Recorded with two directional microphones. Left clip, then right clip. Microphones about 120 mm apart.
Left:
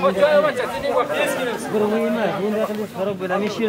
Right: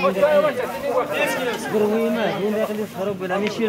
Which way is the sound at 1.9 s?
30° left (ahead or behind).